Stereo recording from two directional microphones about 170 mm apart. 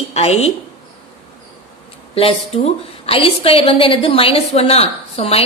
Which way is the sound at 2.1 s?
35° left (ahead or behind).